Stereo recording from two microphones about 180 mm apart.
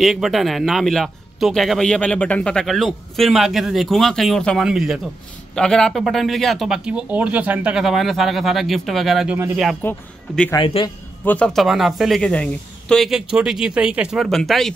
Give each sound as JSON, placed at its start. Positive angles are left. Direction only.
{"t": 0.0, "sound": "a man's voice", "side_deg": 0}
{"t": 9.8, "sound": "speech", "side_deg": 5}
{"t": 10.5, "sound": "a man's voice", "side_deg": 25}
{"t": 11.2, "sound": "a man's voice", "side_deg": 5}